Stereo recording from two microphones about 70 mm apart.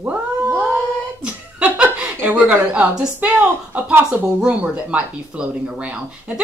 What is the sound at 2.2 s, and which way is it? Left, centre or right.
Speech, right.